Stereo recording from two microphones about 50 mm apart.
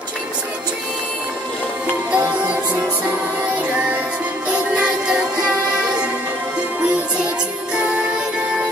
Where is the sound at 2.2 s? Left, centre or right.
Right.